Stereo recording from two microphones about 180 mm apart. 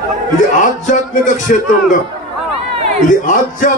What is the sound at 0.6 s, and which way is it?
Speech, 45° left (ahead or behind).